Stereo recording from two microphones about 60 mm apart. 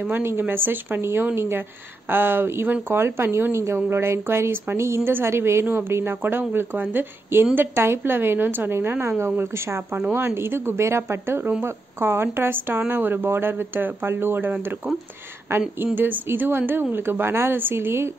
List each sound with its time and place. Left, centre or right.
0.2 s a woman's voice: right
15.8 s a woman's voice: right